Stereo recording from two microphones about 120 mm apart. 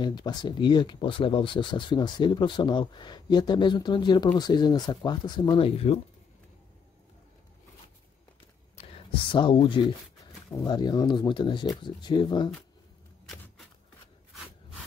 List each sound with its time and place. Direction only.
0.0 s speech: 35° left (ahead or behind)
5.7 s speech: 55° left (ahead or behind)
9.3 s speech: 45° left (ahead or behind)